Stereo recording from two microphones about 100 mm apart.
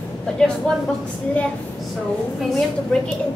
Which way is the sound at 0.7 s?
5° left (ahead or behind).